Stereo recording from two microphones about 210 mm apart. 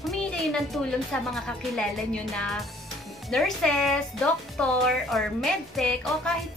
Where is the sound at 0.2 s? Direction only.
5° left (ahead or behind).